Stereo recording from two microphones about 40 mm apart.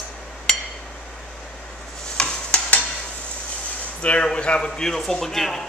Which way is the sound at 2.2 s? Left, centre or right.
Left.